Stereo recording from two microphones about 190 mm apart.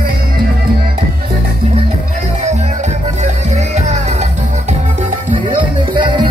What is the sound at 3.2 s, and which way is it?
Music, 35° right (ahead or behind).